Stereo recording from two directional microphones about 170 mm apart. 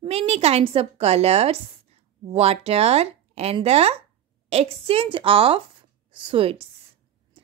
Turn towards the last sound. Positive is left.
turn(degrees=-35)  # may be behind; listen again after turning